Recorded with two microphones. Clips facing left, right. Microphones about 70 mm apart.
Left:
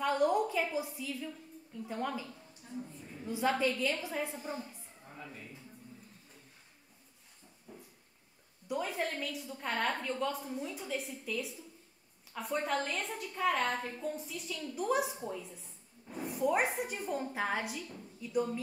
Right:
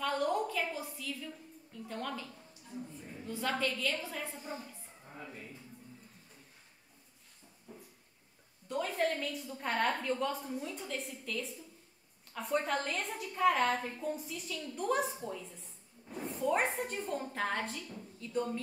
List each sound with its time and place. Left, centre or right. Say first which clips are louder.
0.0 s a woman's voice: left 3 dB; centre
3.3 s a woman's voice: left 4 dB; centre
4.4 s a woman's voice: left 3 dB; centre
5.1 s speech: right 1 dB; centre
8.6 s a woman's voice: right 2 dB; centre
16.1 s a sound: left 1 dB; centre
16.3 s a woman's voice: left 1 dB; centre